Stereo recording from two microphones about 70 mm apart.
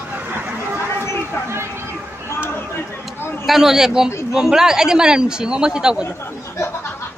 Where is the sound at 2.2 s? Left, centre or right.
Left.